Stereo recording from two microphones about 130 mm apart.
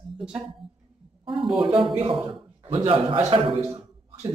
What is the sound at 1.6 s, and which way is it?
A man's voice, 40° right (ahead or behind).